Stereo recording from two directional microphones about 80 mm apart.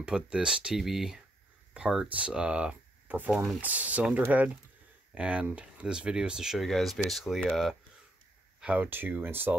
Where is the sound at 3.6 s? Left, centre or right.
Centre.